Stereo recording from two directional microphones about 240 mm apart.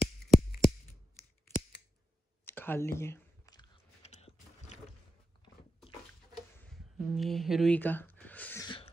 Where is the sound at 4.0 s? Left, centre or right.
Left.